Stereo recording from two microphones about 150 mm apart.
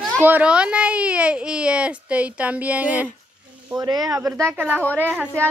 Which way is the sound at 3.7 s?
25° right (ahead or behind).